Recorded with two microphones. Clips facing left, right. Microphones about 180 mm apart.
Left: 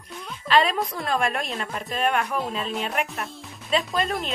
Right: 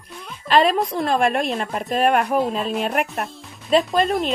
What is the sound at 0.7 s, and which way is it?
Speech, 25° right (ahead or behind).